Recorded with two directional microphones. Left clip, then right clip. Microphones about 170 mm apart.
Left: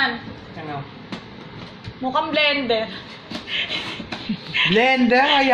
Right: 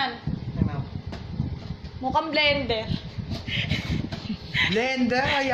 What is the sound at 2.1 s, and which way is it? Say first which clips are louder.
Speech: left 3 dB; 65° right (ahead or behind).